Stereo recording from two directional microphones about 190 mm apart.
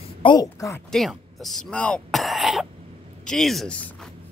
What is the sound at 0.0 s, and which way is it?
Speech, 25° left (ahead or behind).